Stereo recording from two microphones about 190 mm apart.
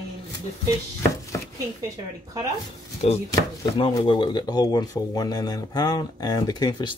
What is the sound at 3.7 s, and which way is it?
Speech, 25° left (ahead or behind).